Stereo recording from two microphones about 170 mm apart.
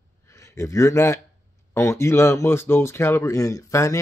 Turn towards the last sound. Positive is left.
turn(degrees=20)  # may be behind; listen again after turning